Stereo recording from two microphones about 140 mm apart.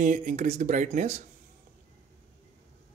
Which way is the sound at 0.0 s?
65° right (ahead or behind).